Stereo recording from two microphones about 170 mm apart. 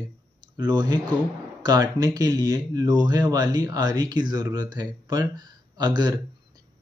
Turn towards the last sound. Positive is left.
turn(degrees=-25)  # may be behind; listen again after turning